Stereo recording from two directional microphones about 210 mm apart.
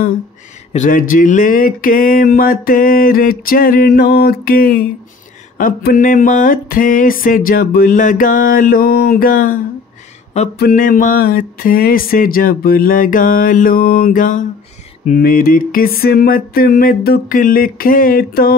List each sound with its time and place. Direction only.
0.7 s speech: 40° left (ahead or behind)
5.6 s a sound: 45° left (ahead or behind)
10.6 s speech: 40° left (ahead or behind)